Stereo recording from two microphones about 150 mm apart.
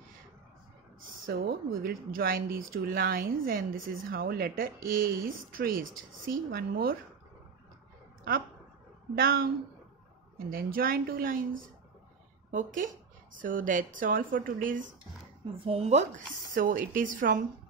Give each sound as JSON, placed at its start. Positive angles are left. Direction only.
{"t": 1.2, "sound": "speech", "side_deg": -90}
{"t": 9.1, "sound": "a woman's voice", "side_deg": -80}
{"t": 12.4, "sound": "a woman's voice", "side_deg": -60}
{"t": 15.6, "sound": "speech", "side_deg": -40}
{"t": 16.5, "sound": "speech", "side_deg": -65}